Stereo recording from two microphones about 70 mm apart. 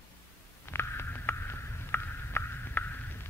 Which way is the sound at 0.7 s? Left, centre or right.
Left.